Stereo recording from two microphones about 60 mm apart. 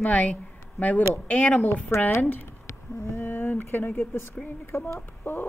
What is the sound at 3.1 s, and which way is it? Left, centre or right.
A woman's voice, left.